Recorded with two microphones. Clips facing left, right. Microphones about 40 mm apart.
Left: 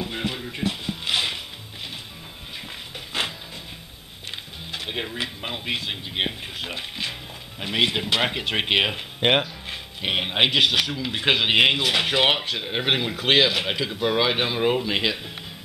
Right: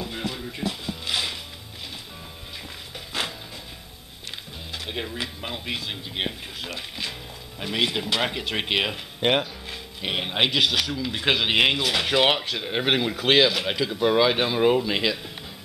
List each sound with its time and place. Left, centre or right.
0.0 s music: left
3.1 s a sound: centre
4.7 s speech: left